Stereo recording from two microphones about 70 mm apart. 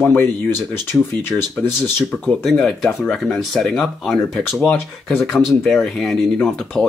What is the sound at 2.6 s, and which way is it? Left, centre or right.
Speech, centre.